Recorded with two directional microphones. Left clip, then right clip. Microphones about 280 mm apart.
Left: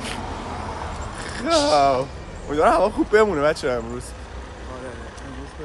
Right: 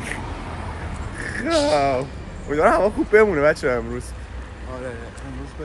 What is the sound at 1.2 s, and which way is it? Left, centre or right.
A man's voice, centre.